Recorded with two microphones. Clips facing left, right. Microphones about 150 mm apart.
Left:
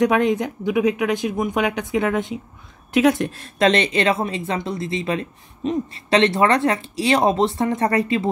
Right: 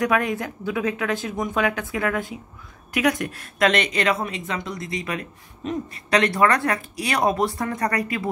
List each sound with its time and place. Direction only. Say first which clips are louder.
0.0 s a woman's voice: left 5 dB; 25° left (ahead or behind)